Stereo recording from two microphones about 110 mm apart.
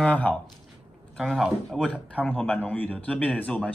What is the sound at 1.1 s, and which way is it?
A man's voice, centre (ahead or behind).